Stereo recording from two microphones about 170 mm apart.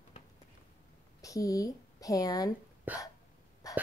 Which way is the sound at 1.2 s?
20° left (ahead or behind).